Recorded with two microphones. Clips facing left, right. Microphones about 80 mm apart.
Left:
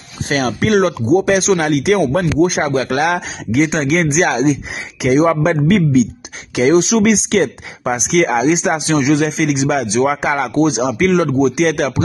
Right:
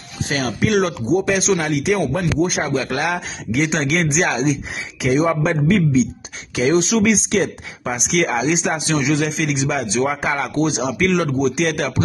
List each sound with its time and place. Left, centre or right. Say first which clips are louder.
0.3 s speech: left 4 dB; left
1.2 s speech: left 5 dB; left
3.6 s speech: left 3 dB; left
5.0 s speech: left 5 dB; left
7.2 s speech: left 4 dB; left